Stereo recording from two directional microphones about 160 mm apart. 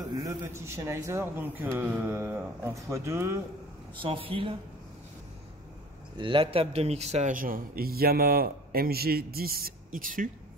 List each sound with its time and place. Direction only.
0.0 s a man's voice: 20° right (ahead or behind)
4.0 s speech: 35° right (ahead or behind)
6.1 s speech: 30° right (ahead or behind); by 10.3 s 55° right (ahead or behind)